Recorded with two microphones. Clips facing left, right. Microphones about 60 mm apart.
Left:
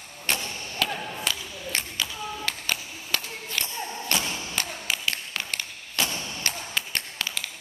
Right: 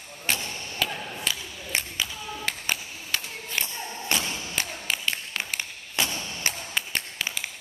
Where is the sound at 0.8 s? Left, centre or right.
Centre.